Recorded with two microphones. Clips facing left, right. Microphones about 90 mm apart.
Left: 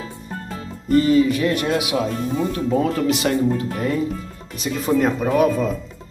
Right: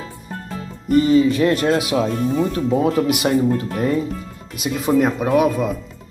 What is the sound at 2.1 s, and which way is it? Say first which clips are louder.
Speech: right 4 dB; centre (ahead or behind).